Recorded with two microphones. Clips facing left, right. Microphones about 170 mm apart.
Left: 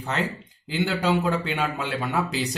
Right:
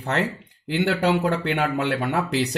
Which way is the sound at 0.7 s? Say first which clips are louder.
Right 3 dB; 65° right (ahead or behind).